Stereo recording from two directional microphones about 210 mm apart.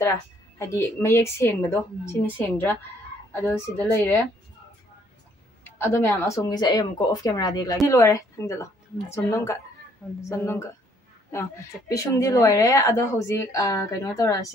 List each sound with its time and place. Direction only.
0.6 s a woman's voice: 15° left (ahead or behind)
5.6 s a woman's voice: 10° left (ahead or behind)